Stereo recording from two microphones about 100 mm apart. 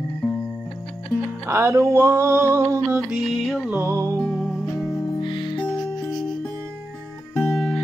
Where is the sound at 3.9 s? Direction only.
30° right (ahead or behind).